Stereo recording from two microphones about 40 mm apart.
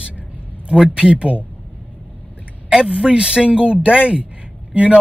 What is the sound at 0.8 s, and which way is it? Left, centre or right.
Speech, centre.